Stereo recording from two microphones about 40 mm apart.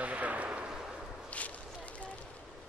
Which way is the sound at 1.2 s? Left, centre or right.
Left.